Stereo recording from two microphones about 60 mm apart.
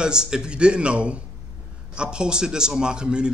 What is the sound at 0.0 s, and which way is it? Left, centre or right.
A man's voice, centre.